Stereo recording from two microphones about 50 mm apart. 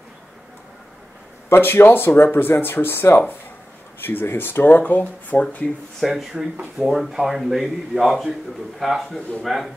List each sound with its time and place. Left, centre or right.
1.5 s speech: left
6.0 s speech: centre